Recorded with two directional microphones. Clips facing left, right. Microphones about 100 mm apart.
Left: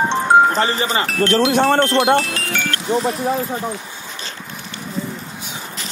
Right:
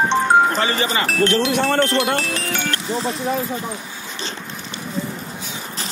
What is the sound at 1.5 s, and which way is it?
Speech, 35° left (ahead or behind).